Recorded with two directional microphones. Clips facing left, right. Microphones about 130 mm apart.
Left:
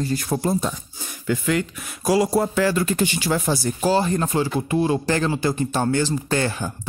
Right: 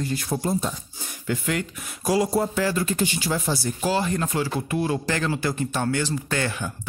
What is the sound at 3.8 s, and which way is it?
A man's voice, 35° left (ahead or behind).